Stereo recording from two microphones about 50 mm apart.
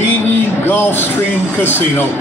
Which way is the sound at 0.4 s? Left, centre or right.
Left.